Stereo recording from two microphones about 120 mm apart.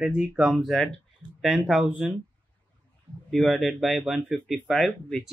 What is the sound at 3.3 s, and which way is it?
Speech, 5° left (ahead or behind).